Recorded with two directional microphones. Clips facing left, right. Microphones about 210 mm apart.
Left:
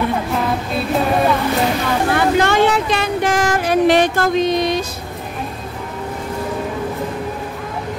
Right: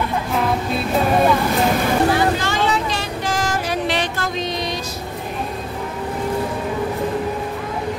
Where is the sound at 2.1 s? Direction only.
60° left (ahead or behind).